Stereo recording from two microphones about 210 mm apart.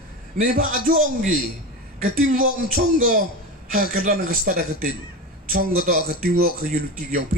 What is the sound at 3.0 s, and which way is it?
A man's voice, 35° right (ahead or behind).